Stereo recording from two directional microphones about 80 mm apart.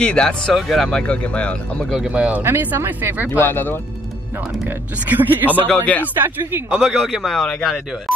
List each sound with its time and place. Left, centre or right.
0.0 s speech: centre
2.0 s a man's voice: centre
3.3 s speech: left
4.6 s a man's voice: right
5.8 s speech: left
6.1 s a man's voice: right
6.8 s a man's voice: centre